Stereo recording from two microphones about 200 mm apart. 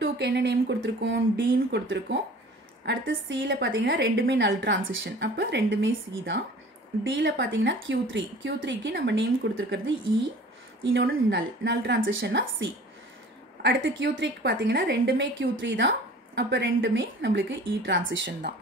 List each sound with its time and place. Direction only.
0.0 s a woman's voice: 60° right (ahead or behind)